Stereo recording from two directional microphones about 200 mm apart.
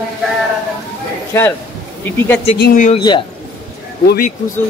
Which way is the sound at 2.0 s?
10° left (ahead or behind).